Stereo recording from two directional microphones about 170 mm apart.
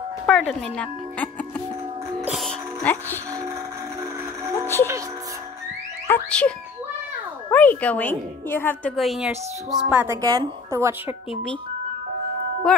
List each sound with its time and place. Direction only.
0.3 s a woman's voice: 5° left (ahead or behind)
2.2 s music: centre (ahead or behind)
6.0 s a woman's voice: 10° left (ahead or behind)
7.5 s a woman's voice: 10° left (ahead or behind)
8.9 s speech: centre (ahead or behind)
9.8 s a woman's voice: 10° right (ahead or behind)
10.2 s a woman's voice: 25° right (ahead or behind)